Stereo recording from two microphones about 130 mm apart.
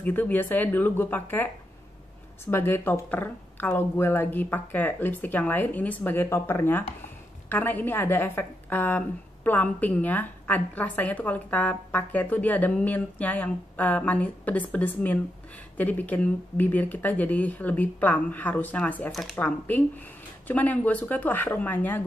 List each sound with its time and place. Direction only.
0.0 s a woman's voice: 15° left (ahead or behind)